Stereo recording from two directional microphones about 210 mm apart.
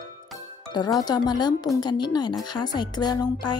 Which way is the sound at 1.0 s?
20° left (ahead or behind).